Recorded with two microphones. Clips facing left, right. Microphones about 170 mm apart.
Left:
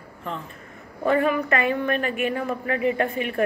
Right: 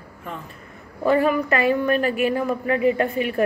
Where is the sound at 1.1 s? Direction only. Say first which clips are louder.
Right 2 dB; 35° right (ahead or behind).